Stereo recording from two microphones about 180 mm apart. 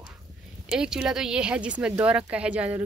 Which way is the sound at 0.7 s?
5° right (ahead or behind).